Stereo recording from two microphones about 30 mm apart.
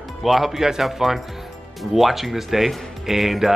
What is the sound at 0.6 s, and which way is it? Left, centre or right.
Speech, centre.